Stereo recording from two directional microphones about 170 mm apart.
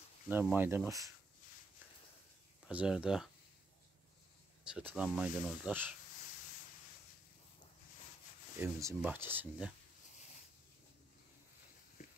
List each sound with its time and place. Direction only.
0.3 s speech: 10° right (ahead or behind)
2.7 s speech: 5° right (ahead or behind)
4.6 s speech: 5° right (ahead or behind)
8.5 s speech: 15° right (ahead or behind)
12.0 s a sound: 50° left (ahead or behind)